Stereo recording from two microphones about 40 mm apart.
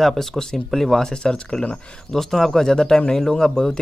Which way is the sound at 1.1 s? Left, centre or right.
Left.